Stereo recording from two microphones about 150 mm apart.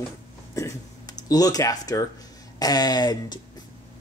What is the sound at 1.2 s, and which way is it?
Speech, 25° left (ahead or behind).